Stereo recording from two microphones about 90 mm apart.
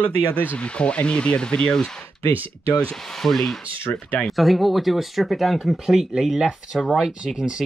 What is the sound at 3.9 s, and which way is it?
Speech, 15° left (ahead or behind).